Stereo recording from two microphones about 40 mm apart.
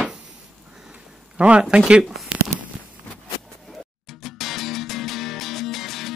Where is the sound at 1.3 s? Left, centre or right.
Right.